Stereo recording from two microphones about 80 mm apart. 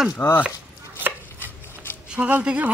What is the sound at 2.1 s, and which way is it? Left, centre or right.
Speech, centre.